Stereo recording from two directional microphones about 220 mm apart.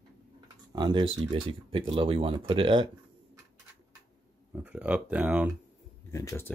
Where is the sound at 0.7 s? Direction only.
20° right (ahead or behind).